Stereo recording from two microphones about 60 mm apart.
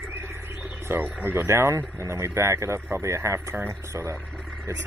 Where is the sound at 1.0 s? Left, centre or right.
Right.